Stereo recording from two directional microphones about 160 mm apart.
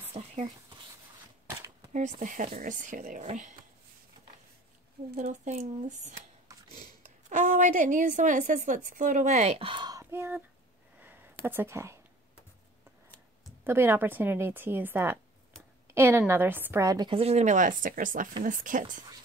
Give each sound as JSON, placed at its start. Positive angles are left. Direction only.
{"t": 0.1, "sound": "a sound", "side_deg": -40}
{"t": 2.0, "sound": "a woman's voice", "side_deg": -50}
{"t": 5.1, "sound": "a woman's voice", "side_deg": -50}
{"t": 7.2, "sound": "a woman's voice", "side_deg": -50}
{"t": 11.0, "sound": "a sound", "side_deg": -10}
{"t": 13.7, "sound": "a woman's voice", "side_deg": -15}
{"t": 17.1, "sound": "speech", "side_deg": -40}